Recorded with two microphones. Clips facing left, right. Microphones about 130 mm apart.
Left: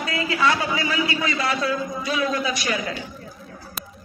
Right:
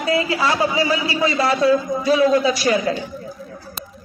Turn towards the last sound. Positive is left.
turn(degrees=-30)  # may be behind; listen again after turning